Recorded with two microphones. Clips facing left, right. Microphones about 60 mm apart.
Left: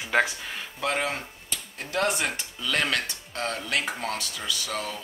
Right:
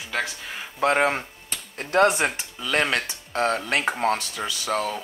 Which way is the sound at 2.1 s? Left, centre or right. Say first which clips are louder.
Right 4 dB; right.